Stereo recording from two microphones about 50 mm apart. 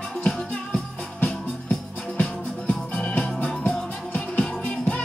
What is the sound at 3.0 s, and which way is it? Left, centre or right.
Music, left.